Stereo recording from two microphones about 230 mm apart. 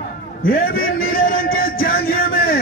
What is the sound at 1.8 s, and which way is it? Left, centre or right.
Music, left.